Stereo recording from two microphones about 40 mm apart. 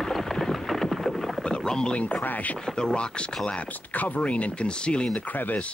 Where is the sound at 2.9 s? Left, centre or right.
Left.